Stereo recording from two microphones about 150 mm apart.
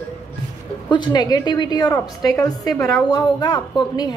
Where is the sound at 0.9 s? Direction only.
30° left (ahead or behind).